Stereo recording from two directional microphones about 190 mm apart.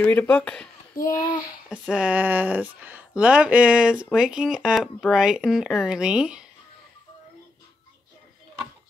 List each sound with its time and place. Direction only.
0.0 s speech: 10° left (ahead or behind)
1.0 s a child's voice: 20° left (ahead or behind)
1.7 s speech: 5° right (ahead or behind)